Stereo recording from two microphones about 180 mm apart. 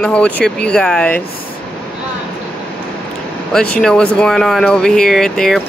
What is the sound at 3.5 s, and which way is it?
Speech, 5° left (ahead or behind).